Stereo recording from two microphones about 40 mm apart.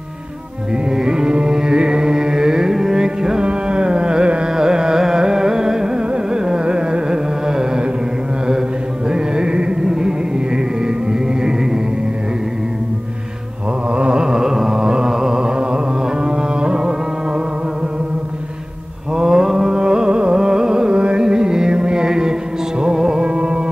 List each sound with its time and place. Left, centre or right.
0.9 s music: centre
9.1 s music: right
13.9 s a sound: right
14.2 s a sound: centre
16.3 s music: right
19.1 s mantra: centre
19.7 s carnatic music: right
21.2 s music: centre